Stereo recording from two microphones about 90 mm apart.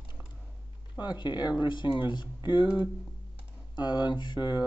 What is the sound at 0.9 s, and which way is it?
Speech, 55° left (ahead or behind).